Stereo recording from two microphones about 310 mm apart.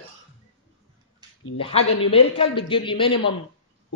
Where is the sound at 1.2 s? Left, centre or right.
Centre.